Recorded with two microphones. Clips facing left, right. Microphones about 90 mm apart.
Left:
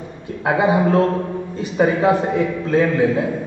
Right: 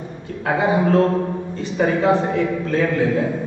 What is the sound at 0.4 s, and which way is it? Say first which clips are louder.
A man's voice: left 2 dB; 20° left (ahead or behind).